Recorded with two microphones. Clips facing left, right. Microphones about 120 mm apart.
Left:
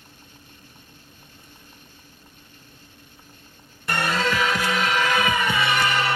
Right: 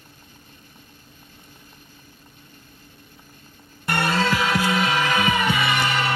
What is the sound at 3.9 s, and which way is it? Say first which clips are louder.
Music: right 2 dB; 30° right (ahead or behind).